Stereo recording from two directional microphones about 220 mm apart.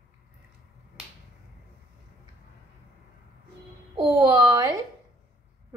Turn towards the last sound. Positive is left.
turn(degrees=-15)  # may be behind; listen again after turning